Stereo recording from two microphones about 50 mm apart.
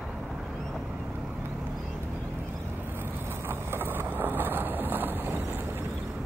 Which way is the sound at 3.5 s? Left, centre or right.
Right.